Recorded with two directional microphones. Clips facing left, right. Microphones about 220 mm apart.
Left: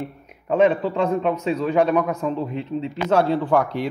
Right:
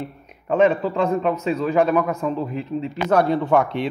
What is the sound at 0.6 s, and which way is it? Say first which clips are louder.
A man's voice: even; 5° right (ahead or behind).